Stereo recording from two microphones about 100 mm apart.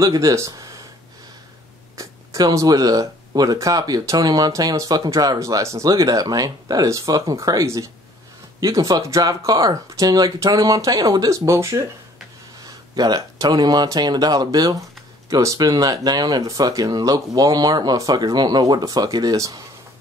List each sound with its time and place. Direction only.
0.0 s speech: 35° right (ahead or behind)
2.0 s speech: 35° right (ahead or behind)
12.9 s speech: 40° right (ahead or behind)